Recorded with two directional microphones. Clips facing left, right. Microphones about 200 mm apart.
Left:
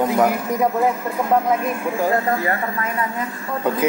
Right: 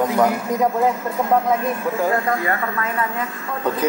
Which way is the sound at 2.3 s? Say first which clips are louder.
Even; 30° left (ahead or behind).